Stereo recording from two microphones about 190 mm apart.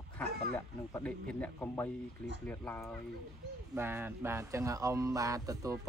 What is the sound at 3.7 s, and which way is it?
Speech, 10° right (ahead or behind).